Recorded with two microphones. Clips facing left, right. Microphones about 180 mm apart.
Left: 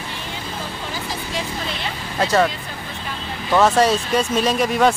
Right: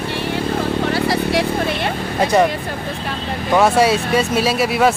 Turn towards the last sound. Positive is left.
turn(degrees=-5)  # may be behind; listen again after turning